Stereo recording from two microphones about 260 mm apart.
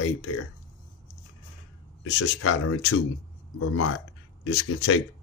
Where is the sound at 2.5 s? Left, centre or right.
Left.